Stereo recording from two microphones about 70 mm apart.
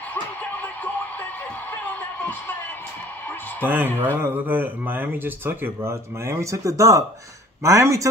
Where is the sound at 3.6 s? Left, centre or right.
Right.